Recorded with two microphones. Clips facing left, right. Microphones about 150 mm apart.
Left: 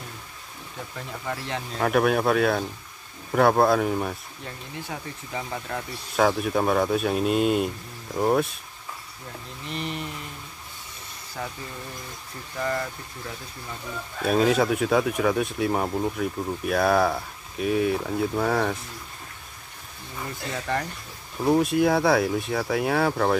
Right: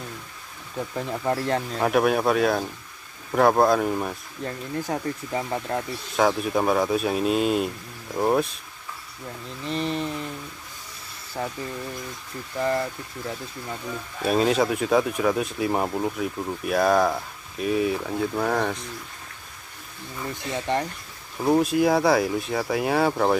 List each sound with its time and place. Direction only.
0.9 s speech: 40° right (ahead or behind)
1.8 s speech: centre (ahead or behind)
4.5 s speech: 45° right (ahead or behind)
5.4 s speech: 30° right (ahead or behind)
6.1 s speech: centre (ahead or behind)
9.7 s mantra: 35° right (ahead or behind)
11.4 s speech: 35° right (ahead or behind)
12.5 s speech: 30° right (ahead or behind)
14.2 s speech: centre (ahead or behind)
20.5 s speech: 25° right (ahead or behind)
21.4 s speech: centre (ahead or behind)